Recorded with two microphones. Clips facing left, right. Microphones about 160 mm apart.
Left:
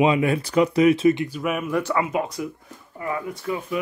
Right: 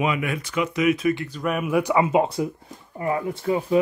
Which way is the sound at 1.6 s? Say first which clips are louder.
Right 6 dB; 15° right (ahead or behind).